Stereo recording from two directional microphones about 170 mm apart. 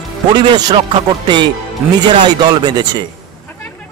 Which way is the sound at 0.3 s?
25° right (ahead or behind).